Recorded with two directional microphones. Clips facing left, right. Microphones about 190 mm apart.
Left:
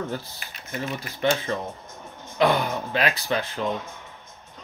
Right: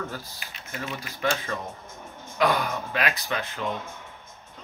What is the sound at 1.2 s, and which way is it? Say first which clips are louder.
Speech: left 4 dB; 25° left (ahead or behind).